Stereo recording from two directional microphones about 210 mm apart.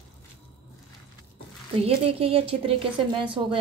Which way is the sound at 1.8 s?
30° right (ahead or behind).